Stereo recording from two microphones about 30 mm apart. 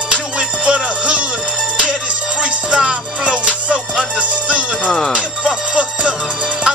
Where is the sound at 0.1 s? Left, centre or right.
Right.